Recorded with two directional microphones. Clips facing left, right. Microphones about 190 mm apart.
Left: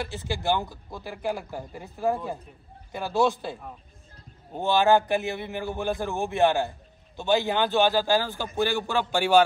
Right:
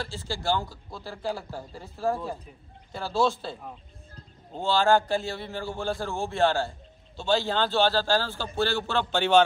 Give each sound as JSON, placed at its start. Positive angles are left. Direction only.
{"t": 0.0, "sound": "a man's voice", "side_deg": 20}